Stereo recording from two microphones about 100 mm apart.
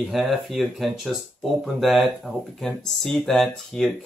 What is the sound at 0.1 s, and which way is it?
Speech, centre (ahead or behind).